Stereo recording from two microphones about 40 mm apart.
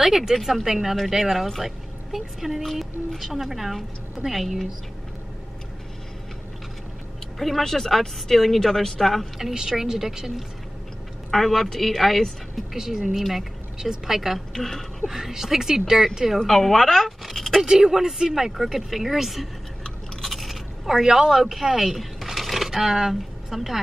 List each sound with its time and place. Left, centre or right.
0.0 s speech: centre
7.3 s speech: centre
9.4 s speech: centre
11.2 s speech: centre
12.7 s speech: centre
13.1 s speech: centre
13.7 s speech: centre
14.5 s speech: centre
15.0 s speech: centre
16.3 s speech: centre
17.6 s speech: centre
20.2 s scrape: centre
21.4 s speech: centre